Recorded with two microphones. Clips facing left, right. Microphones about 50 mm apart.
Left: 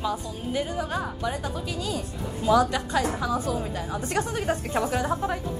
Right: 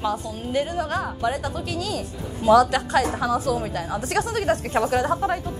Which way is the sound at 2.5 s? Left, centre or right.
Right.